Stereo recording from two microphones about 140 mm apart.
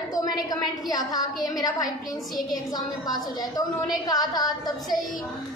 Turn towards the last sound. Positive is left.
turn(degrees=30)  # may be behind; listen again after turning